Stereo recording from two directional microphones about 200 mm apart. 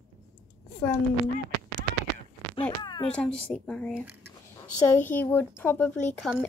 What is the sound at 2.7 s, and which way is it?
Speech, 20° left (ahead or behind).